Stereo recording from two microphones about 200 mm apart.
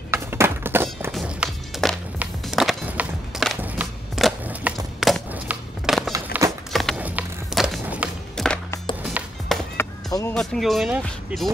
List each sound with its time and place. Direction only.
0.1 s music: 10° right (ahead or behind)
9.8 s chop: 15° left (ahead or behind)
10.3 s speech: centre (ahead or behind)